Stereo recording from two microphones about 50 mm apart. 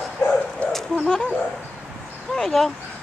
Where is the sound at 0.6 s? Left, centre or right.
Left.